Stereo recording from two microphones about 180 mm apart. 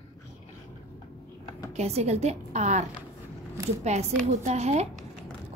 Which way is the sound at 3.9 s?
40° right (ahead or behind).